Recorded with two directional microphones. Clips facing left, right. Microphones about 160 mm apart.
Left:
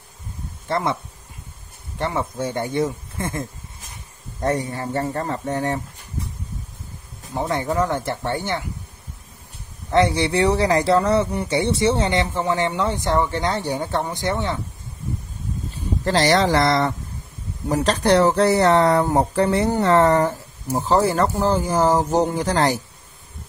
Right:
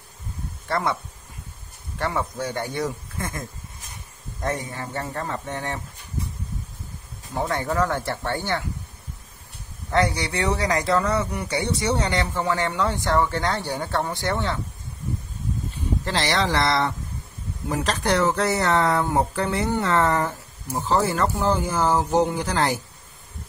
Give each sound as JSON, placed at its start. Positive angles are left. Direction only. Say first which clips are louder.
{"t": 0.7, "sound": "speech", "louder": "left 2 dB", "side_deg": 20}
{"t": 2.0, "sound": "speech", "louder": "left 2 dB", "side_deg": 20}
{"t": 7.3, "sound": "speech", "louder": "left 2 dB", "side_deg": 15}
{"t": 9.8, "sound": "speech", "louder": "left 5 dB", "side_deg": 25}
{"t": 16.1, "sound": "speech", "louder": "left 7 dB", "side_deg": 40}